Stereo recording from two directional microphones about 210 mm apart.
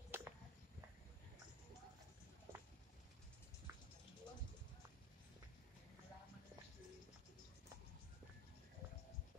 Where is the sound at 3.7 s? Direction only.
15° right (ahead or behind).